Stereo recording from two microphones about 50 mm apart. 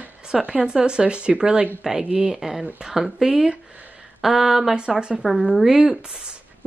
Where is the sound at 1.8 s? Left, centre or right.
Centre.